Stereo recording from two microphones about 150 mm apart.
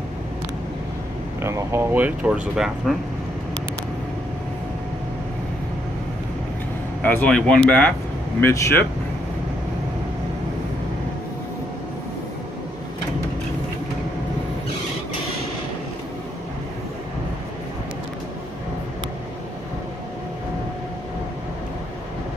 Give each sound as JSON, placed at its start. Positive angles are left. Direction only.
{"t": 1.4, "sound": "speech", "side_deg": -15}
{"t": 7.0, "sound": "speech", "side_deg": 10}